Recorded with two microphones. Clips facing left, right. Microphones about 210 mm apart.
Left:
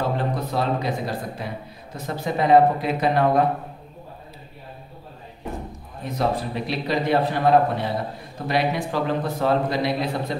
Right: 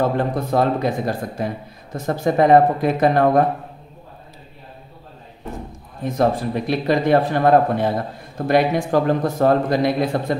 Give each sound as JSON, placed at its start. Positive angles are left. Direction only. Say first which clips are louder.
{"t": 0.0, "sound": "speech", "louder": "right 5 dB", "side_deg": -50}
{"t": 6.0, "sound": "speech", "louder": "right 5 dB", "side_deg": -50}